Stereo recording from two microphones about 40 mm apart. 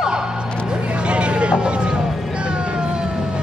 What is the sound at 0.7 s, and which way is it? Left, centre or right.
Vehicle, right.